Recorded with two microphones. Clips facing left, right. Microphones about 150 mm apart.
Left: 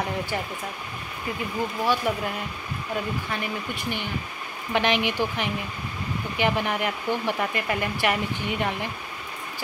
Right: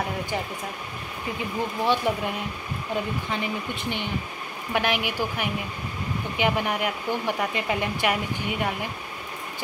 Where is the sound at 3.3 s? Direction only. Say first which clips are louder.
Right 1 dB; 20° right (ahead or behind).